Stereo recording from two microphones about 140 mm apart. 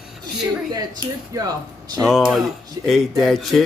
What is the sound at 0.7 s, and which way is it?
Speech, 25° right (ahead or behind).